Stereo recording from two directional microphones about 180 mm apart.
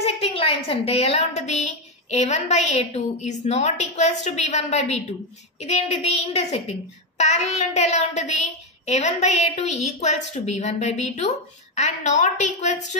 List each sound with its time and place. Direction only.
0.0 s a woman's voice: 35° left (ahead or behind)